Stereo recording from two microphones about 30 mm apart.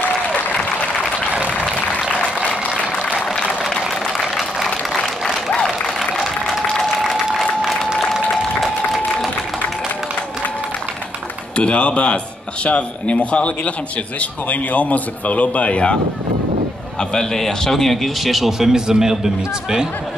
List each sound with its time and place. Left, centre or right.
4.2 s vehicle: centre
8.3 s a sound: centre
11.5 s speech: left
17.1 s a man's voice: centre
18.2 s speech: centre